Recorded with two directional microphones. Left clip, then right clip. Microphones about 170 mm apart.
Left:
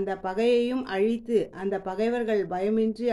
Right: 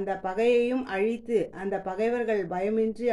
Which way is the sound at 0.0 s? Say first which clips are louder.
Even; 20° left (ahead or behind).